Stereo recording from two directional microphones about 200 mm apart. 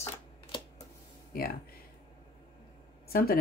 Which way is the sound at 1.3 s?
45° left (ahead or behind).